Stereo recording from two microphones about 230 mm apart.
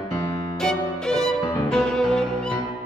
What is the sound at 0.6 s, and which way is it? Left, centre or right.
Music, centre.